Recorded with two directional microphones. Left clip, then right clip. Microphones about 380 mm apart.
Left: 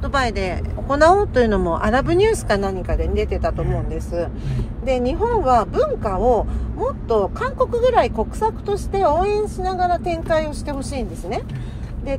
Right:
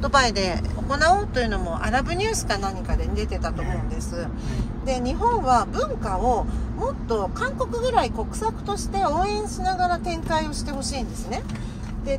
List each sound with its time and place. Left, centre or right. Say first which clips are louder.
0.0 s speech: right 1 dB; centre
0.9 s speech: left 6 dB; centre
4.8 s speech: left 4 dB; centre